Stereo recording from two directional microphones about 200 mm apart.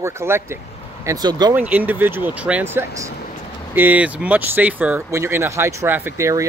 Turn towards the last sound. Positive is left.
turn(degrees=-15)  # may be behind; listen again after turning